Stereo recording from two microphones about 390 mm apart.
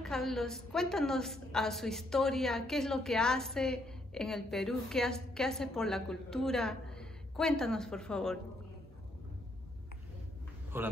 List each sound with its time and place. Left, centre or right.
0.0 s a woman's voice: centre
10.7 s a woman's voice: centre